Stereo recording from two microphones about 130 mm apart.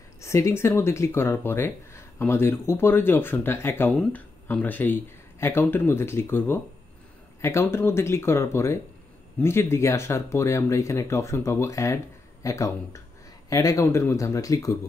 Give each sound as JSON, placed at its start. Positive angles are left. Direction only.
{"t": 0.2, "sound": "speech", "side_deg": 20}